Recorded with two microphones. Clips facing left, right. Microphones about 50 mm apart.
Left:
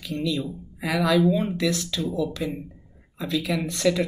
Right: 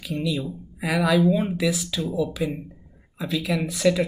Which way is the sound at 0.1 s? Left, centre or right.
Centre.